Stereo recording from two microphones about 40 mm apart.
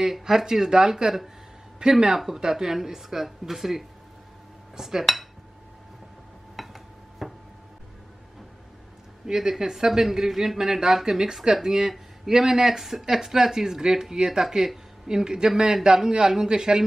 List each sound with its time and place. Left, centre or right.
0.0 s speech: centre
6.5 s dishes: centre
9.2 s speech: centre